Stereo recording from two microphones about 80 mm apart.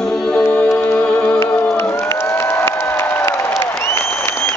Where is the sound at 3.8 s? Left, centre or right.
Left.